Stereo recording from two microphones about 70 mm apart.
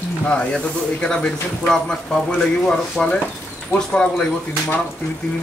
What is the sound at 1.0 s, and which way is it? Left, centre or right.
Speech, centre.